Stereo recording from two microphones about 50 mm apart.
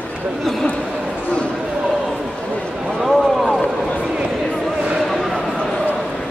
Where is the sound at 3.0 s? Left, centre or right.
Centre.